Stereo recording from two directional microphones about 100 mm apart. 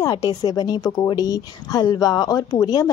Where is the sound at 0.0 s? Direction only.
40° left (ahead or behind).